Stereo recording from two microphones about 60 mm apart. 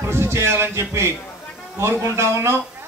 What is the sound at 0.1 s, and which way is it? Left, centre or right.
A man's voice, right.